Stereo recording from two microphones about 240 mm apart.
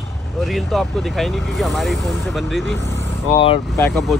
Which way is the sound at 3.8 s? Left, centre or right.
Centre.